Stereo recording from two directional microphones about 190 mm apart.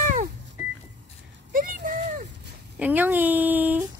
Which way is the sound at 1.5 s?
45° right (ahead or behind).